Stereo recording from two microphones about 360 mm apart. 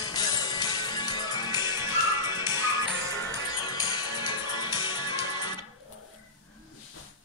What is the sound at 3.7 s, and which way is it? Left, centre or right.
Music, centre.